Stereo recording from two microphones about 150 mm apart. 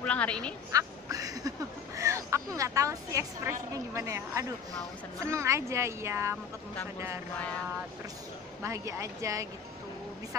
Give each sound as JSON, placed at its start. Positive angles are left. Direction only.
{"t": 0.0, "sound": "a woman's voice", "side_deg": 10}
{"t": 0.7, "sound": "quack", "side_deg": -25}
{"t": 2.0, "sound": "a woman's voice", "side_deg": -20}
{"t": 8.6, "sound": "a woman's voice", "side_deg": -20}